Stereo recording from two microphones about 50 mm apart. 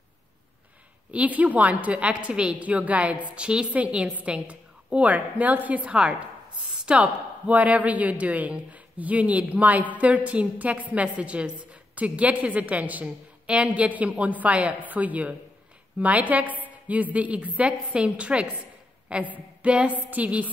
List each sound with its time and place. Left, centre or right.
1.1 s a woman's voice: right